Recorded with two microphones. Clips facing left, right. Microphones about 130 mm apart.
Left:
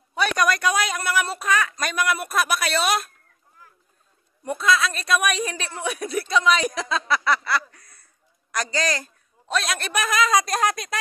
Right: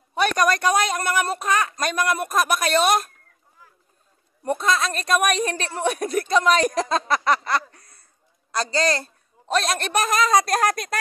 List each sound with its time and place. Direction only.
0.4 s speech: 45° right (ahead or behind)
4.5 s a man's voice: 35° right (ahead or behind)